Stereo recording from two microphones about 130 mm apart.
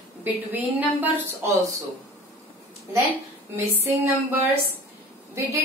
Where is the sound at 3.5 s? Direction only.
15° right (ahead or behind).